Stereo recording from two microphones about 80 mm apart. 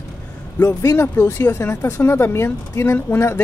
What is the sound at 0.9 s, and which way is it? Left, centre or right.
Speech, left.